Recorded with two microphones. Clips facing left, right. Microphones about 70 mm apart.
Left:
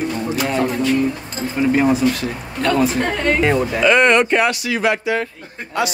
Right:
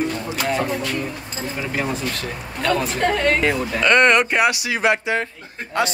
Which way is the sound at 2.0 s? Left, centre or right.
Centre.